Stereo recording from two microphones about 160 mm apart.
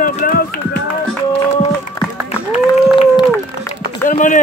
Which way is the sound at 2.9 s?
35° left (ahead or behind).